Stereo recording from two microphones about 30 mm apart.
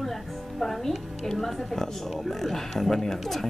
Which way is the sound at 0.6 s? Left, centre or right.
Centre.